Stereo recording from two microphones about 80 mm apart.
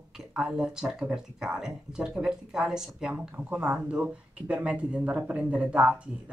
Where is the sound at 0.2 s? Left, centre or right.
Centre.